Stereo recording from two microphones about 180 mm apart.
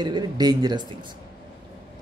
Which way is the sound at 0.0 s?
25° right (ahead or behind).